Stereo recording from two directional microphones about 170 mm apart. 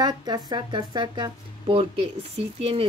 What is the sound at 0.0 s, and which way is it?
Speech, 25° right (ahead or behind).